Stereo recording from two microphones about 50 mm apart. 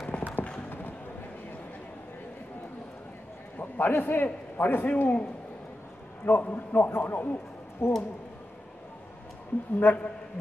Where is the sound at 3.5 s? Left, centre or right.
Left.